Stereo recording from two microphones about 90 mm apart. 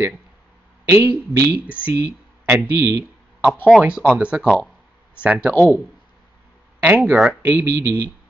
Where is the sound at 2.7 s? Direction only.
35° right (ahead or behind).